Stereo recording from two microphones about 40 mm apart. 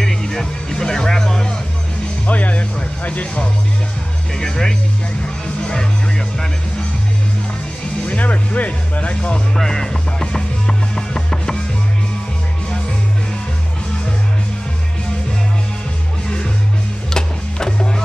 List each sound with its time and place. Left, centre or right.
0.0 s music: centre
2.2 s music: left
3.1 s speech: left
4.4 s speech: centre
8.1 s music: left
9.6 s speech: centre
10.2 s music: centre
17.1 s music: centre